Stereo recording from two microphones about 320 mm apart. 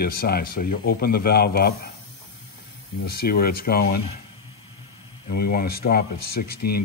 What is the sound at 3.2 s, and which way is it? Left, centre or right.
Speech, left.